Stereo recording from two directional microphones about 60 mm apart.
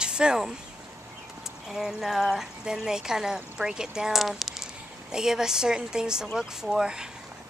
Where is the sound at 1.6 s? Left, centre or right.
Centre.